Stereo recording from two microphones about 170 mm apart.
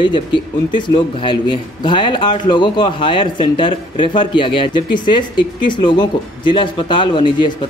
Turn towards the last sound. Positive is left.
turn(degrees=30)  # may be behind; listen again after turning